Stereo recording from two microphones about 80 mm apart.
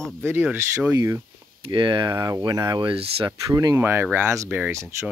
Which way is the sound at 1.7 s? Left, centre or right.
Right.